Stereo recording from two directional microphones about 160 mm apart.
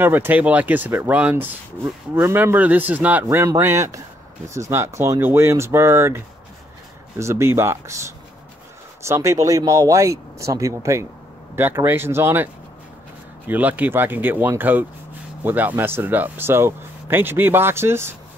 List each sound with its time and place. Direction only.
0.0 s speech: 10° right (ahead or behind)
13.5 s speech: 10° right (ahead or behind)